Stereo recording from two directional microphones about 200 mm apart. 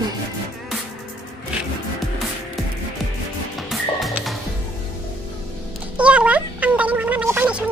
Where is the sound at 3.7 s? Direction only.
Centre (ahead or behind).